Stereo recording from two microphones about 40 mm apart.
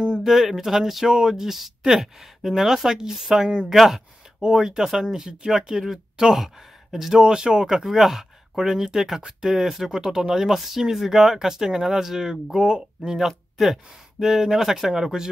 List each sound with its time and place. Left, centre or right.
0.2 s speech: centre
7.2 s speech: right
13.6 s speech: centre